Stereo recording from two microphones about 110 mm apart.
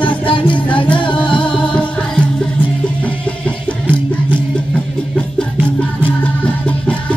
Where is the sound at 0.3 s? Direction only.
50° left (ahead or behind).